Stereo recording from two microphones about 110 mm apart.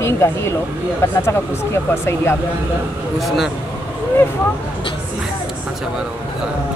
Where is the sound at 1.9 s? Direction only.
25° left (ahead or behind).